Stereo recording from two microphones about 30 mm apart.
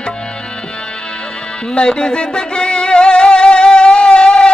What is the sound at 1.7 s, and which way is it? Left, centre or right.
Music, left.